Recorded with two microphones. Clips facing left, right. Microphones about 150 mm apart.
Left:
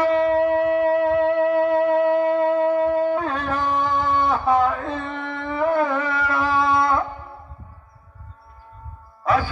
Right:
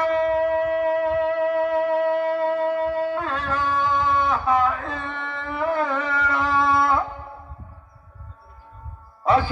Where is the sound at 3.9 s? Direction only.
30° left (ahead or behind).